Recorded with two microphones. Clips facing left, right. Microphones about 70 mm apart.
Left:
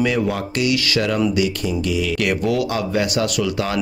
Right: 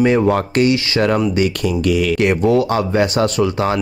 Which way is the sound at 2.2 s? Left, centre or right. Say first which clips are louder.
Right 6 dB; right.